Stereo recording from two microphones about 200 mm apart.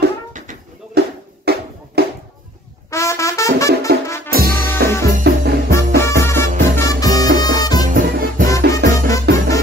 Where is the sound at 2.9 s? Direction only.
15° left (ahead or behind).